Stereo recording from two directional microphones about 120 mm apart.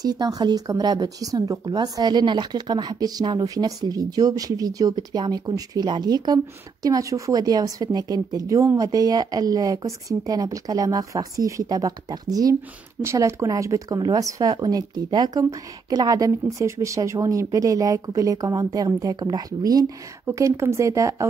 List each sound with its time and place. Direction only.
0.0 s speech: 30° right (ahead or behind)